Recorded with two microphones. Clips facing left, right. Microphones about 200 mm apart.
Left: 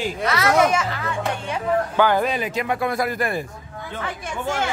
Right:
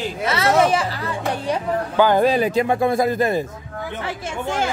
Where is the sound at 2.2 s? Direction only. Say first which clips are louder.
Right 7 dB; 35° right (ahead or behind).